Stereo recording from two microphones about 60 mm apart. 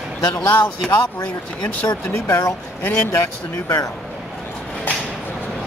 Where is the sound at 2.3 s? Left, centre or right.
Left.